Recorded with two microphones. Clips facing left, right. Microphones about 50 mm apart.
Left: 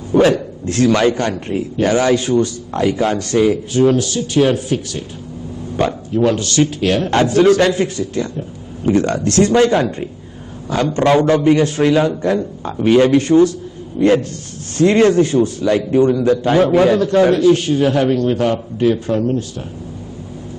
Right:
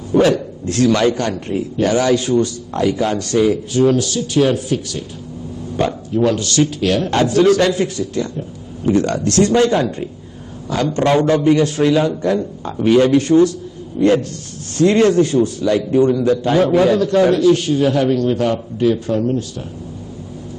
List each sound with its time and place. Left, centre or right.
0.1 s a man's voice: left